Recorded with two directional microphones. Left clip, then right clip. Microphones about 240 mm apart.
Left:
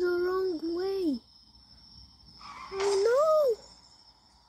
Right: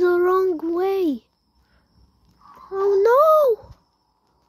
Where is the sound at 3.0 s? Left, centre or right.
Centre.